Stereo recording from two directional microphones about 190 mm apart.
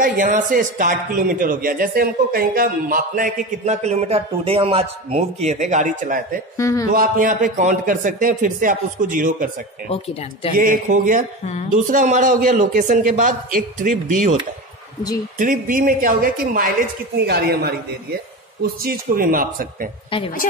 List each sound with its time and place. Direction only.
0.0 s a man's voice: 45° right (ahead or behind)
6.5 s a man's voice: 15° left (ahead or behind)
6.9 s a man's voice: 45° right (ahead or behind)
9.8 s speech: 30° left (ahead or behind)
10.6 s a man's voice: 45° right (ahead or behind)
15.3 s a man's voice: 45° right (ahead or behind)